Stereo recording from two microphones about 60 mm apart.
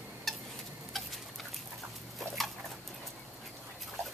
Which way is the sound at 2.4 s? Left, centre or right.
Centre.